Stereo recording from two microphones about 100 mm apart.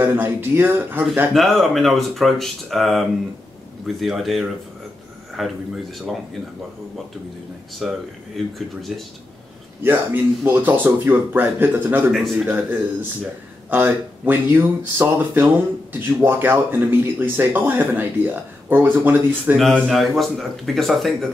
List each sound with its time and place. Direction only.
0.0 s speech: 20° right (ahead or behind)
1.3 s speech: centre (ahead or behind)
7.8 s speech: centre (ahead or behind)
9.8 s speech: 20° right (ahead or behind)
12.1 s speech: centre (ahead or behind)
12.4 s speech: 15° right (ahead or behind)
19.9 s speech: centre (ahead or behind)